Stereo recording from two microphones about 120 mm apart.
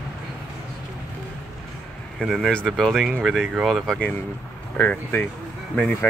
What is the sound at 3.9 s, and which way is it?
Speech, 10° left (ahead or behind).